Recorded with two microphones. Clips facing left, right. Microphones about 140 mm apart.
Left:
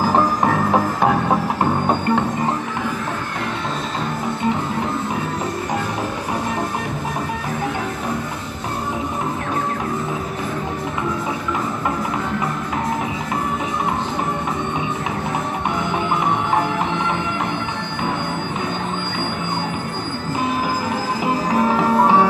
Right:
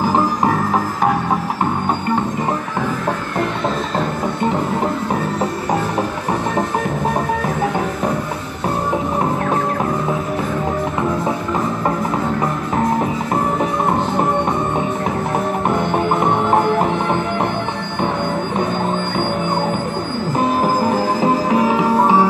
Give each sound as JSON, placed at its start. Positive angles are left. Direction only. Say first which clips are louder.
{"t": 15.8, "sound": "music", "louder": "right 4 dB", "side_deg": -50}
{"t": 21.6, "sound": "music", "louder": "left 1 dB", "side_deg": -10}